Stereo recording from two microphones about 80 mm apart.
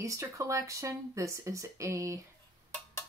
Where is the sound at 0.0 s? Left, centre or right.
Right.